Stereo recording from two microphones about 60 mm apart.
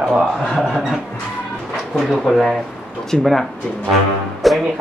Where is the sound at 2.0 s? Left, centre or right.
Centre.